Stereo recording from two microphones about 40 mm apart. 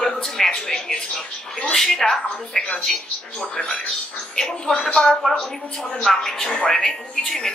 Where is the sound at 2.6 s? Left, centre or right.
Left.